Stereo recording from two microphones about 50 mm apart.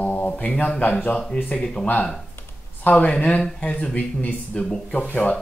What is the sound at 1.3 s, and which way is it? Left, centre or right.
Speech, centre.